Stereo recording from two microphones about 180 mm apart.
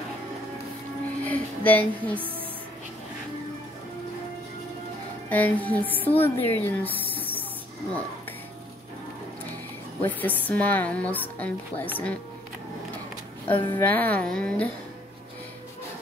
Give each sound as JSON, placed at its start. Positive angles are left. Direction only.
{"t": 1.2, "sound": "music", "side_deg": 10}
{"t": 5.3, "sound": "a woman's voice", "side_deg": 10}
{"t": 10.0, "sound": "a woman's voice", "side_deg": 10}
{"t": 13.5, "sound": "a woman's voice", "side_deg": 10}